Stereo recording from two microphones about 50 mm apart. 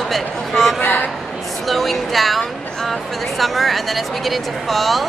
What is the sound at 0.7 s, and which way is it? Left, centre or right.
Speech, left.